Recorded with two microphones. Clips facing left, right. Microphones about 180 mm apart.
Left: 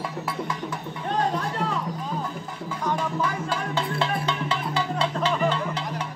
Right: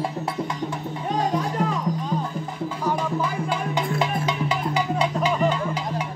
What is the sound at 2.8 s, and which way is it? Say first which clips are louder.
Music: right 1 dB; 15° right (ahead or behind).